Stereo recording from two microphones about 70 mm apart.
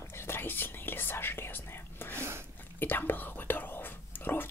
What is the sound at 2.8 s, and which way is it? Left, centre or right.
Whispering, left.